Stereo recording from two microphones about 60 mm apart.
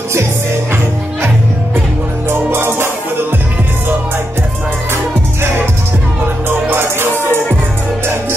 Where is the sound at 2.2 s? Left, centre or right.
Right.